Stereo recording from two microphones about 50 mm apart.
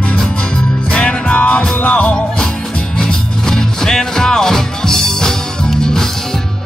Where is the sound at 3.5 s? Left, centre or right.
Centre.